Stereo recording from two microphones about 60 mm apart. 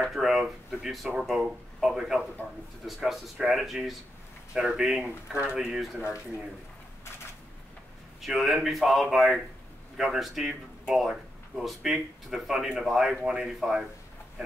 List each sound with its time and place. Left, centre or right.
0.1 s a sound: centre
0.4 s speech: centre
5.0 s speech: right
8.2 s a man's voice: centre